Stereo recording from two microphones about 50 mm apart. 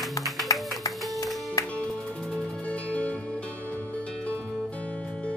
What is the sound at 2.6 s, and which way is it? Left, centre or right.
Music, left.